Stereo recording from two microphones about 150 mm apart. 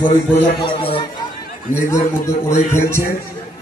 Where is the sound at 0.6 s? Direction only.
35° left (ahead or behind).